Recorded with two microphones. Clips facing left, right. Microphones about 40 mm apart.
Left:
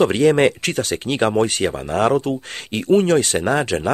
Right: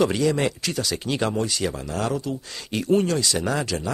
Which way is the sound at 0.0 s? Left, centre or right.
Left.